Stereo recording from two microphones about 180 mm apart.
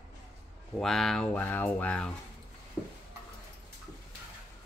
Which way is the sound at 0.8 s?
Centre (ahead or behind).